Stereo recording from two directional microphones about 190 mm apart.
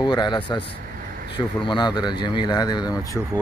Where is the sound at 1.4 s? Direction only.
25° left (ahead or behind).